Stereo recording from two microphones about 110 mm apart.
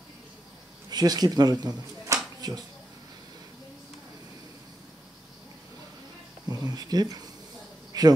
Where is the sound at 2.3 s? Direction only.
35° right (ahead or behind).